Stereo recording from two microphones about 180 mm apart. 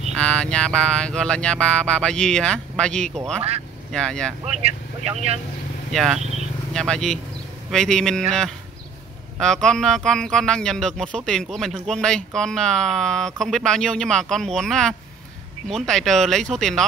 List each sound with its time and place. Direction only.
0.1 s speech: 5° left (ahead or behind)
3.3 s speech: 35° right (ahead or behind)
3.9 s speech: 5° left (ahead or behind)
5.0 s speech: 35° right (ahead or behind)
5.9 s speech: centre (ahead or behind)